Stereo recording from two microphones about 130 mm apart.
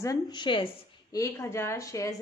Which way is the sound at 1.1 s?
20° left (ahead or behind).